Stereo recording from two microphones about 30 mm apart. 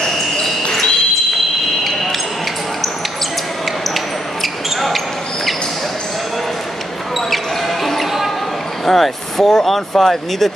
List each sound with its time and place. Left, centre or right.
0.0 s basketball bounce: centre
3.9 s basketball bounce: centre
7.2 s basketball bounce: centre
8.8 s speech: centre